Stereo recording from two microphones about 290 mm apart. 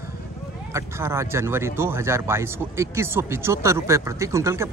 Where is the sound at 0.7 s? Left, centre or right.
Centre.